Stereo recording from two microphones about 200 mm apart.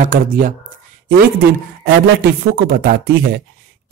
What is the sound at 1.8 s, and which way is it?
A man's voice, 50° right (ahead or behind).